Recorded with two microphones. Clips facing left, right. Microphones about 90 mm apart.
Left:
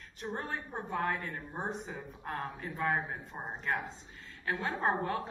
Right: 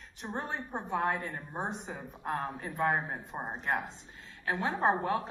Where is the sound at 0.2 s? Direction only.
20° right (ahead or behind).